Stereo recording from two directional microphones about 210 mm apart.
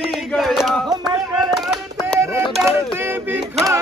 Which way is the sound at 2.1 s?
15° right (ahead or behind).